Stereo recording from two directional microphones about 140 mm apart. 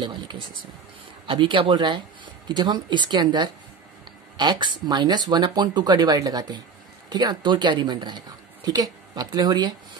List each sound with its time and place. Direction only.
0.0 s speech: 35° right (ahead or behind)